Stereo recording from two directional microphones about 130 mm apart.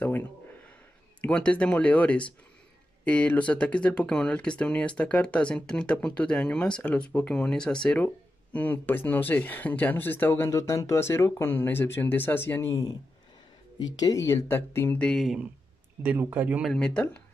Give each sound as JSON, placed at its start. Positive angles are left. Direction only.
{"t": 0.0, "sound": "a sound", "side_deg": 15}
{"t": 1.2, "sound": "speech", "side_deg": 10}
{"t": 16.0, "sound": "speech", "side_deg": -15}
{"t": 16.6, "sound": "speech", "side_deg": 5}